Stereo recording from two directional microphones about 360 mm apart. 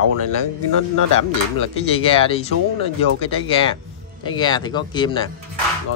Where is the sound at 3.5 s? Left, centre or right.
Centre.